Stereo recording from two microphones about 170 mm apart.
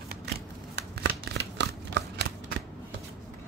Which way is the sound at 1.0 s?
80° right.